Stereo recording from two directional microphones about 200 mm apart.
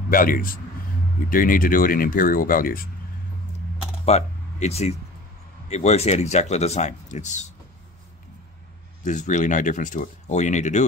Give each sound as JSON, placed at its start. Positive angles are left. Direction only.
{"t": 0.1, "sound": "speech", "side_deg": 45}
{"t": 4.0, "sound": "a sound", "side_deg": 30}
{"t": 5.7, "sound": "speech", "side_deg": 35}
{"t": 9.0, "sound": "speech", "side_deg": 40}